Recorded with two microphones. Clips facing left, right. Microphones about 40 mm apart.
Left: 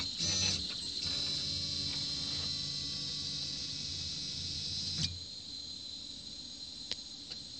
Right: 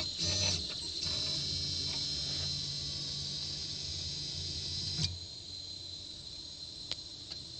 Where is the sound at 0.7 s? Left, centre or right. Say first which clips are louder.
Even; left.